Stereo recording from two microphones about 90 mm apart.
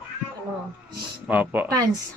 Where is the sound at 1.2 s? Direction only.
20° right (ahead or behind).